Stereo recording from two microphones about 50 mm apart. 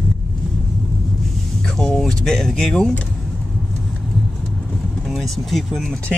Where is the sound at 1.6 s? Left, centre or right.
Centre.